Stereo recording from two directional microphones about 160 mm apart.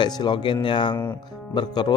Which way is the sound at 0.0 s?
30° left (ahead or behind).